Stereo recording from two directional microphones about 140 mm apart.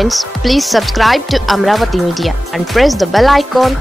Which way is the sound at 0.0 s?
Centre (ahead or behind).